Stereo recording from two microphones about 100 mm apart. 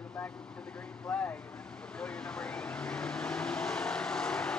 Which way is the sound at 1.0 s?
15° left (ahead or behind).